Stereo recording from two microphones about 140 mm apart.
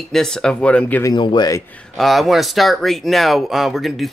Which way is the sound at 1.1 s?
30° left (ahead or behind).